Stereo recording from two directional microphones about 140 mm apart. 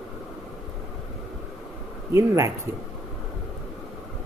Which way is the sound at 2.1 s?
20° right (ahead or behind).